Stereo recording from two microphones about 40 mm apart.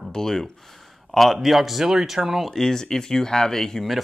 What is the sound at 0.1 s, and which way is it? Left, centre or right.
Speech, centre.